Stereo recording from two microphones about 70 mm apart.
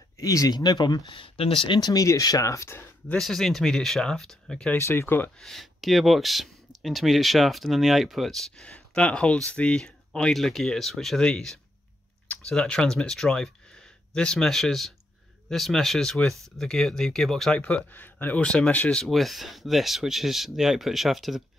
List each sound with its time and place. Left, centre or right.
0.2 s speech: left
3.2 s speech: centre
4.7 s speech: left
5.4 s speech: centre
8.6 s speech: centre
17.6 s speech: centre
18.9 s speech: centre